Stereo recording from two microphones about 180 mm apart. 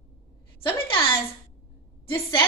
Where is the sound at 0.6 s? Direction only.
30° left (ahead or behind).